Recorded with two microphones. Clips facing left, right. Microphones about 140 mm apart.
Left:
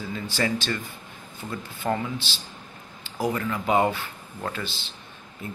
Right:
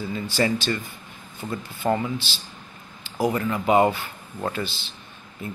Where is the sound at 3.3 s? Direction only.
20° right (ahead or behind).